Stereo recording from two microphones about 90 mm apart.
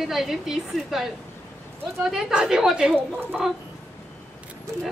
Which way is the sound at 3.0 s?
25° right (ahead or behind).